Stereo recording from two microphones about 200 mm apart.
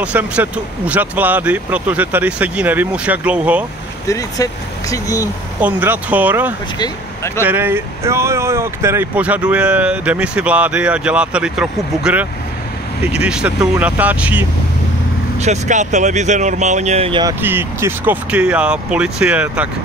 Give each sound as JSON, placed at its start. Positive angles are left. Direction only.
{"t": 0.0, "sound": "speech", "side_deg": -5}
{"t": 4.1, "sound": "speech", "side_deg": 15}
{"t": 5.6, "sound": "speech", "side_deg": -10}
{"t": 6.8, "sound": "speech", "side_deg": 15}
{"t": 7.4, "sound": "speech", "side_deg": -10}
{"t": 15.4, "sound": "speech", "side_deg": -35}